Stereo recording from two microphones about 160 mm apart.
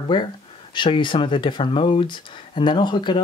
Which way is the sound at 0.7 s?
30° left (ahead or behind).